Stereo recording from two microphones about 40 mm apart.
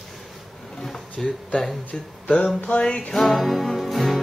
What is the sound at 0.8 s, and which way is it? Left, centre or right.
Speech, centre.